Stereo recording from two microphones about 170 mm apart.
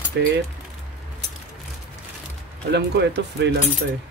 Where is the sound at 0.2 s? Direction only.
90° right.